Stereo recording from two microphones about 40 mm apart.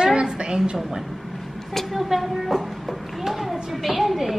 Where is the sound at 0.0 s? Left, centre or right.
Centre.